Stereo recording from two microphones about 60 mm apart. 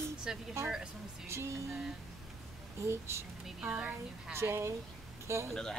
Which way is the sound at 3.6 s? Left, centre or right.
Right.